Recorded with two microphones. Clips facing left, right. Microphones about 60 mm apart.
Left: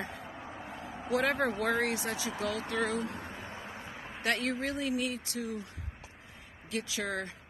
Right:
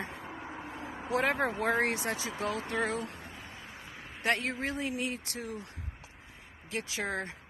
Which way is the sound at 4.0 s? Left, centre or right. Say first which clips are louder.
Left 3 dB; centre.